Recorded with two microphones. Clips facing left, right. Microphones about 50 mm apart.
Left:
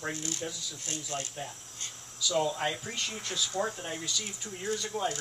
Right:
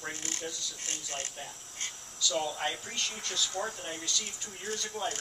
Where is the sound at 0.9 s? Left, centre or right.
Right.